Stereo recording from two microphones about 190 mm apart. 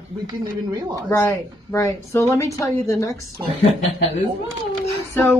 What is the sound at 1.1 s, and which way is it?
A woman's voice, 15° left (ahead or behind).